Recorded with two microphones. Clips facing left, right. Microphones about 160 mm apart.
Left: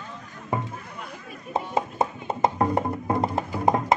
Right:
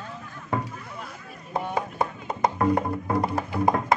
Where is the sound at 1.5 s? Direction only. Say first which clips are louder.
Left 1 dB; 25° left (ahead or behind).